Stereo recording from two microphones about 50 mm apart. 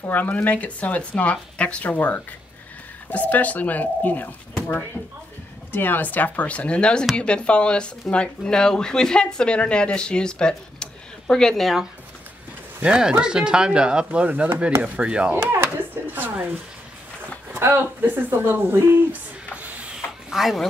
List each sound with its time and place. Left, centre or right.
0.1 s speech: left
5.7 s speech: left; by 11.8 s centre
12.8 s speech: right
14.2 s speech: right
15.3 s a sound: right
17.6 s speech: right
19.5 s printer: right
20.2 s speech: centre